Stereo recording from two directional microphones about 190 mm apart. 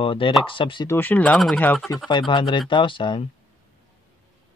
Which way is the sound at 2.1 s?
25° left (ahead or behind).